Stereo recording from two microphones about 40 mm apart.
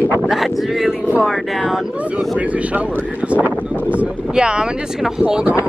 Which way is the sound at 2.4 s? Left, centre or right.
Right.